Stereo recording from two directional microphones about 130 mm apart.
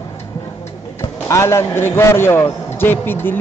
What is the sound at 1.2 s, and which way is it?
A man's voice, 20° left (ahead or behind).